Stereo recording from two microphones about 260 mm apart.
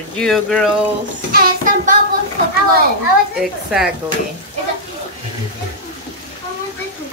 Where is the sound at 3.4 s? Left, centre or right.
Centre.